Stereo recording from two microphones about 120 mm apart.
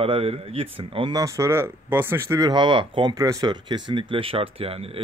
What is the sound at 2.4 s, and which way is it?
Speech, 40° right (ahead or behind).